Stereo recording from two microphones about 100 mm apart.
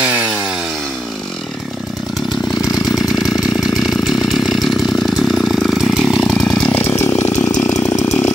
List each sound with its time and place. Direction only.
0.0 s chainsaw: 25° right (ahead or behind)
3.7 s chainsaw: centre (ahead or behind)
6.8 s chainsaw: 25° left (ahead or behind)